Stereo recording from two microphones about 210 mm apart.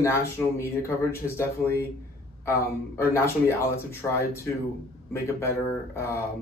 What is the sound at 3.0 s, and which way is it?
Speech, 10° left (ahead or behind).